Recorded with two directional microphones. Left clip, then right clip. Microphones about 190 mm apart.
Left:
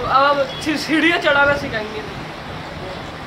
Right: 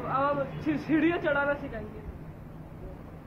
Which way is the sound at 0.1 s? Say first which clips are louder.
Left 13 dB; 35° left (ahead or behind).